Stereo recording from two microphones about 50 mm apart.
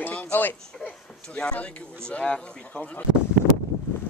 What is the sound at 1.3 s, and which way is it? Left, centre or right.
A man's voice, left.